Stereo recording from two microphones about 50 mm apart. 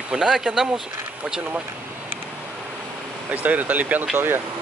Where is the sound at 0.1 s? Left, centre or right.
Centre.